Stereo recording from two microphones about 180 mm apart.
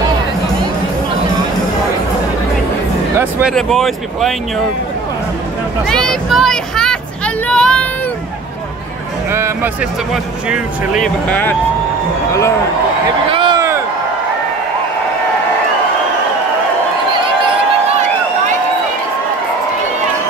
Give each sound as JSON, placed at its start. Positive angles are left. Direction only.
{"t": 3.2, "sound": "music", "side_deg": -10}
{"t": 3.5, "sound": "speech", "side_deg": 0}
{"t": 5.9, "sound": "vehicle", "side_deg": 5}
{"t": 9.3, "sound": "speech", "side_deg": -15}
{"t": 10.1, "sound": "speech", "side_deg": -5}
{"t": 11.2, "sound": "speech", "side_deg": 10}
{"t": 13.3, "sound": "a sound", "side_deg": -30}